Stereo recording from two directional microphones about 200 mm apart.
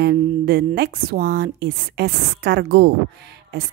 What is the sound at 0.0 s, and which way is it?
A woman's voice, 55° right (ahead or behind).